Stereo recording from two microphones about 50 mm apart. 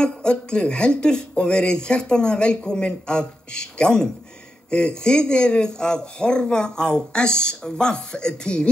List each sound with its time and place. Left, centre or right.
0.0 s speech: centre